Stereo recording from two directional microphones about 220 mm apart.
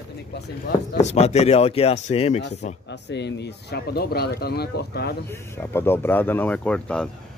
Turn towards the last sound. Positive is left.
turn(degrees=5)  # may be behind; listen again after turning